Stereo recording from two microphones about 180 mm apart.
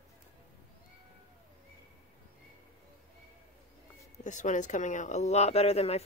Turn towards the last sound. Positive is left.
turn(degrees=35)  # may be behind; listen again after turning